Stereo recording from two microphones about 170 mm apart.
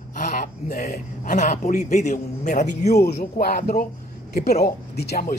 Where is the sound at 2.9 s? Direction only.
65° left (ahead or behind).